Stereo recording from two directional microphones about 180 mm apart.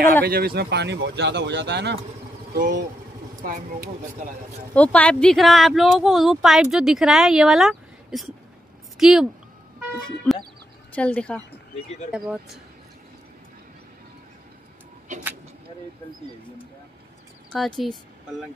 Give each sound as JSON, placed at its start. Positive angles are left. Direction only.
{"t": 0.0, "sound": "speech", "side_deg": -55}
{"t": 2.5, "sound": "speech", "side_deg": -50}
{"t": 4.7, "sound": "speech", "side_deg": 5}
{"t": 10.3, "sound": "speech", "side_deg": 5}
{"t": 12.1, "sound": "speech", "side_deg": -5}
{"t": 15.1, "sound": "speech", "side_deg": -45}
{"t": 17.5, "sound": "speech", "side_deg": 5}